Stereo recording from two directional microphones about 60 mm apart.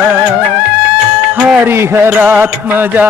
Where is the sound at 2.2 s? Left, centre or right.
Right.